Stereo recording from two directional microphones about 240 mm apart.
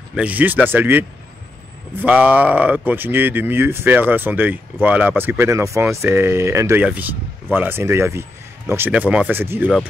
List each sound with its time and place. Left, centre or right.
0.1 s speech: centre